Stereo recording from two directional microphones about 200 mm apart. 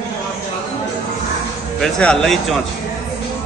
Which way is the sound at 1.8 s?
5° left (ahead or behind).